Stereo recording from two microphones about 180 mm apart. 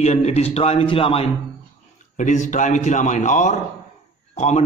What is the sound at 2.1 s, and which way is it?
A man's voice, 40° left (ahead or behind).